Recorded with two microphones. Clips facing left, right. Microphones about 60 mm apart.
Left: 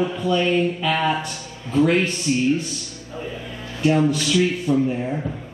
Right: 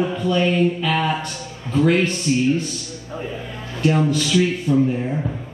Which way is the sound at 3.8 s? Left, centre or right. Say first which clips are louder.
Even; centre.